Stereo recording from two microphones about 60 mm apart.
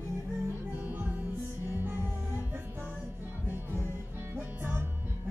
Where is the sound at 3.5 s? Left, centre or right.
Right.